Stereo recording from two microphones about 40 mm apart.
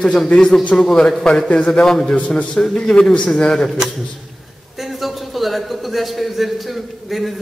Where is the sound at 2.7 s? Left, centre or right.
Centre.